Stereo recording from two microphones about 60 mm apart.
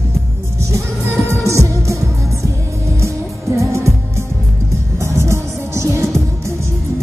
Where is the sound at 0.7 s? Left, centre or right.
Right.